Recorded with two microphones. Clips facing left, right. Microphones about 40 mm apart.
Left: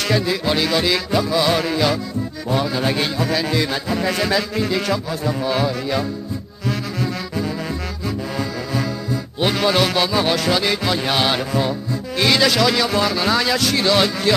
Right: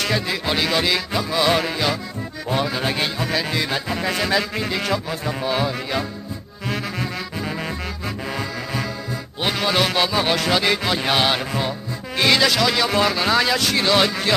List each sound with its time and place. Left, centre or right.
0.3 s a man's voice: right
2.5 s a man's voice: right
2.8 s music: centre
4.4 s a man's voice: right
9.4 s a man's voice: centre
12.2 s music: centre
12.4 s speech: centre
12.7 s a man's voice: right